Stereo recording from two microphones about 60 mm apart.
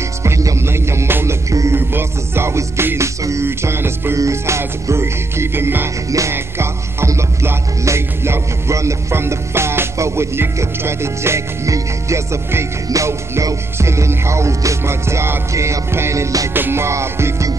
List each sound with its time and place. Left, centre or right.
0.2 s music: right
0.6 s music: right
4.2 s music: right
12.9 s music: right
13.7 s music: right
16.5 s music: right